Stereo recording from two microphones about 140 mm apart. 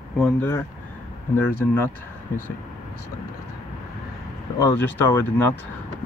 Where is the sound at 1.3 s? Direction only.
15° left (ahead or behind).